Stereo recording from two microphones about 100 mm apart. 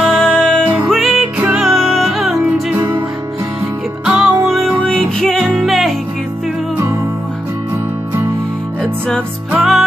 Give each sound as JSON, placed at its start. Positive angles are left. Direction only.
{"t": 0.1, "sound": "music", "side_deg": 10}
{"t": 2.7, "sound": "music", "side_deg": -20}
{"t": 4.0, "sound": "music", "side_deg": -10}
{"t": 4.8, "sound": "music", "side_deg": 5}
{"t": 9.5, "sound": "music", "side_deg": -5}